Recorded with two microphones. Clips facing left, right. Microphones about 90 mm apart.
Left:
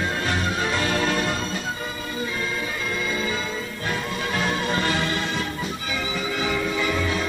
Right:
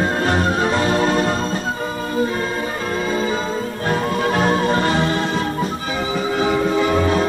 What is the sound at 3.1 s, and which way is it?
Organ, 40° right (ahead or behind).